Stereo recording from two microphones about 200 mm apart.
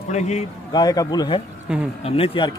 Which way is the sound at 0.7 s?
20° left (ahead or behind).